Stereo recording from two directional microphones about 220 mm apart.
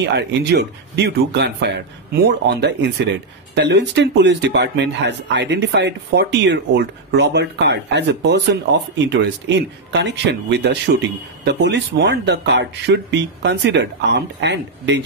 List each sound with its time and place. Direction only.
0.1 s speech: 50° right (ahead or behind)